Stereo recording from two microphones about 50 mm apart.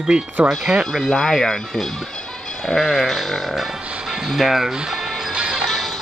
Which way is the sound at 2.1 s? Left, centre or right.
Centre.